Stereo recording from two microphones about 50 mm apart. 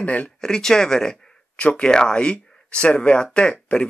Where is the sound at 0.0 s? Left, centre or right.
Left.